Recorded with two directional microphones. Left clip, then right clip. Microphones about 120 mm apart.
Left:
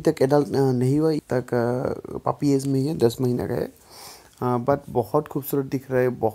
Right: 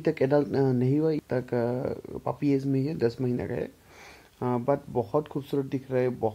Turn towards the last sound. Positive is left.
turn(degrees=35)  # may be behind; listen again after turning